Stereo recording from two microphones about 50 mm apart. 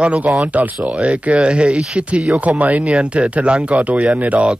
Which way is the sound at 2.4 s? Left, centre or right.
Right.